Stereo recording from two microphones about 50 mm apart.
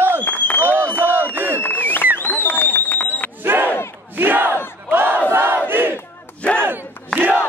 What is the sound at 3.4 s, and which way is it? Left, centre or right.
Battle cry, right.